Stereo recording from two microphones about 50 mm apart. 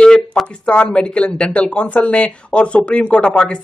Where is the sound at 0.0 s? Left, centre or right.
Centre.